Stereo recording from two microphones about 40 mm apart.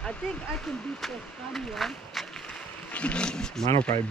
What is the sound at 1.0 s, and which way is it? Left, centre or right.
Speech, centre.